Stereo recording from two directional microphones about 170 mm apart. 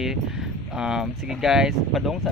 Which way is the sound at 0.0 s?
Centre (ahead or behind).